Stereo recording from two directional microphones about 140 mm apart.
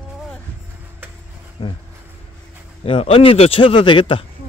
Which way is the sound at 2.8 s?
40° left (ahead or behind).